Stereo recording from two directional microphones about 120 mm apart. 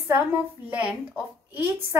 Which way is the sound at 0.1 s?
15° right (ahead or behind).